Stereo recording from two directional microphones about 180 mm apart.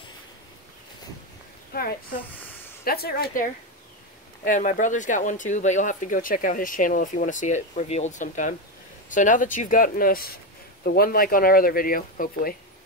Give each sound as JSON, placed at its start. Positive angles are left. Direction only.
{"t": 1.7, "sound": "a child's voice", "side_deg": 55}
{"t": 2.3, "sound": "a sound", "side_deg": 10}
{"t": 2.8, "sound": "speech", "side_deg": 55}
{"t": 4.5, "sound": "speech", "side_deg": 45}